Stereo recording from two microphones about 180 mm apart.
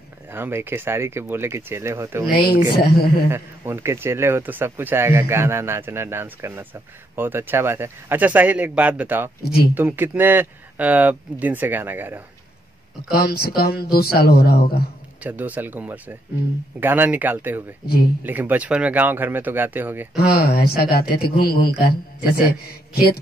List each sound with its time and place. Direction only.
0.3 s a man's voice: 15° right (ahead or behind)
2.7 s a man's voice: 60° left (ahead or behind)
3.3 s a man's voice: 15° right (ahead or behind)
9.4 s a man's voice: 60° left (ahead or behind)
9.8 s a man's voice: 10° right (ahead or behind)
13.1 s a man's voice: 60° left (ahead or behind)
15.2 s a man's voice: 10° right (ahead or behind)
20.2 s a man's voice: 60° left (ahead or behind)